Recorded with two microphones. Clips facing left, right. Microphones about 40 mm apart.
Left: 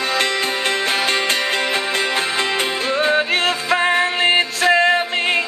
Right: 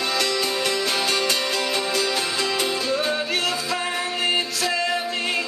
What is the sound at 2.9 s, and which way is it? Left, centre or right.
Music, left.